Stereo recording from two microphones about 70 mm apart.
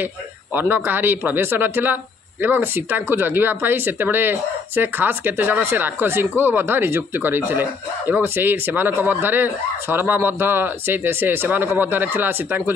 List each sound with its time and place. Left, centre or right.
0.0 s speech: right